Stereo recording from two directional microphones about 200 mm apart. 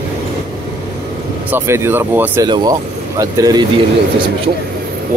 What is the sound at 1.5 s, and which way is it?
Speech, 15° right (ahead or behind).